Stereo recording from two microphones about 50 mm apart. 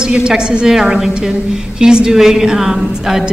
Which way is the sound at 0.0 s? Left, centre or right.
Centre.